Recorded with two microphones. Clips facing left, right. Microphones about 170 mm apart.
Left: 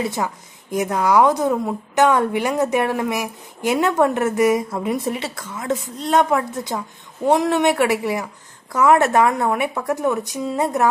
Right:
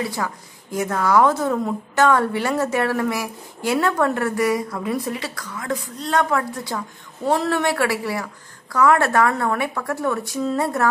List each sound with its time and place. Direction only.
0.0 s a woman's voice: 20° left (ahead or behind)